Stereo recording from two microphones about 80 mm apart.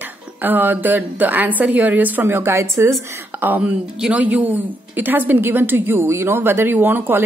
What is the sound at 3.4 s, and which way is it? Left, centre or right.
Speech, right.